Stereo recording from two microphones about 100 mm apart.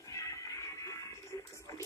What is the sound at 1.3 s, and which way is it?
Music, 35° left (ahead or behind).